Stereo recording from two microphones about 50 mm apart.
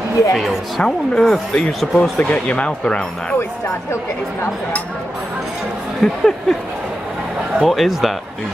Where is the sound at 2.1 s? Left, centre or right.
Left.